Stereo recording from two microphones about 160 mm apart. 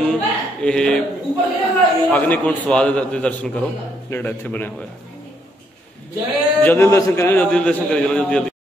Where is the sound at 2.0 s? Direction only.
10° left (ahead or behind).